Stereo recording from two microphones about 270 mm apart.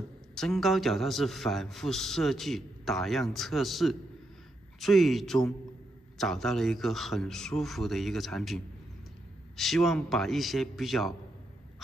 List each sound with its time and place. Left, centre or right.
0.3 s a man's voice: centre
9.6 s a man's voice: centre